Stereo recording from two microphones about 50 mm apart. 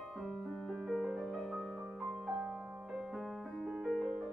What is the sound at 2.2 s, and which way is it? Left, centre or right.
Music, centre.